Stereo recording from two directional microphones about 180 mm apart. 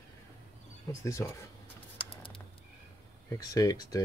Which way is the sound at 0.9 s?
15° left (ahead or behind).